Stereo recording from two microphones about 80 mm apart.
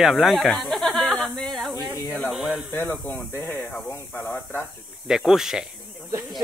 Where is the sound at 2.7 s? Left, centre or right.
Left.